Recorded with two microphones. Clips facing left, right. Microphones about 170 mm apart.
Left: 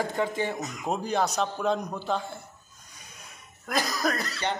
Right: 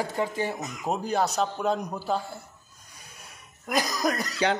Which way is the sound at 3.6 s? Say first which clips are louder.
Right 2 dB; 15° right (ahead or behind).